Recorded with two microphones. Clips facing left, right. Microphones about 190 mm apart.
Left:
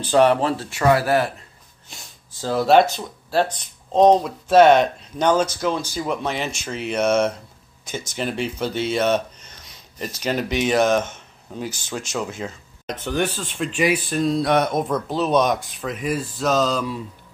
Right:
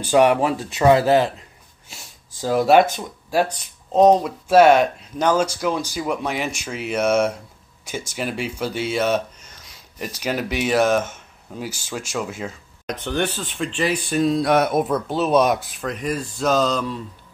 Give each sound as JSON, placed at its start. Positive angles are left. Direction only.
{"t": 0.0, "sound": "speech", "side_deg": -10}
{"t": 2.4, "sound": "speech", "side_deg": -10}